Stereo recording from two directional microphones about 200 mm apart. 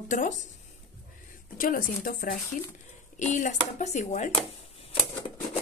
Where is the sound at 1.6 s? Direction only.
45° left (ahead or behind).